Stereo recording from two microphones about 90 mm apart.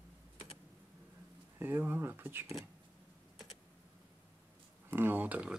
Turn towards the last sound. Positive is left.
turn(degrees=-15)  # may be behind; listen again after turning